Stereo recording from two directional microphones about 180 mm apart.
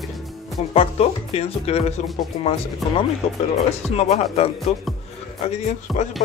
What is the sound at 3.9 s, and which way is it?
Speech, 35° left (ahead or behind).